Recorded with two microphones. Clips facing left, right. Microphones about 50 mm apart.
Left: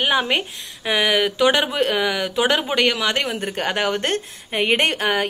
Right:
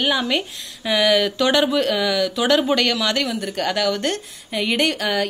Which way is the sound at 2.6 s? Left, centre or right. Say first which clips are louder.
Right 1 dB; centre.